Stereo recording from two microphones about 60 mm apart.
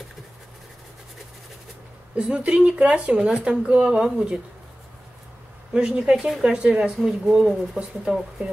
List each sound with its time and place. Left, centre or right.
2.1 s speech: centre
5.7 s speech: centre